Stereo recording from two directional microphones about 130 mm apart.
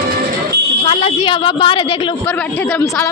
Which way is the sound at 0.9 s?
45° left (ahead or behind).